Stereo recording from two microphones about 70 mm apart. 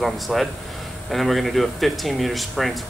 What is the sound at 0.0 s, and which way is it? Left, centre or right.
Speech, centre.